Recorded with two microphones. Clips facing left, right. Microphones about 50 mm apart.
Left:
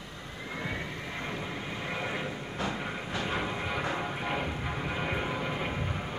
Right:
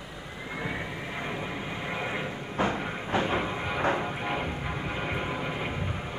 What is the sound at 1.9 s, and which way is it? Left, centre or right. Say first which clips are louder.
Vehicle: right 2 dB; centre.